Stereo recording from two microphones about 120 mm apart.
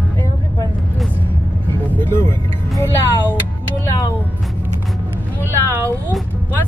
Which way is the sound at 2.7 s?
20° left (ahead or behind).